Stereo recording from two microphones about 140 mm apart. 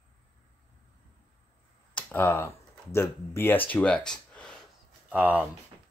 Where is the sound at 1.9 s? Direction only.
15° left (ahead or behind).